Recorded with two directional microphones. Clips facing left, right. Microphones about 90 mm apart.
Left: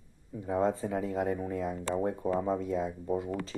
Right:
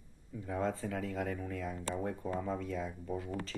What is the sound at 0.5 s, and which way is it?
Speech, 20° left (ahead or behind).